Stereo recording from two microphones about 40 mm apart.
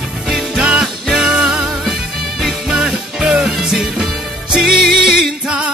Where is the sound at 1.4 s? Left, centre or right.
Right.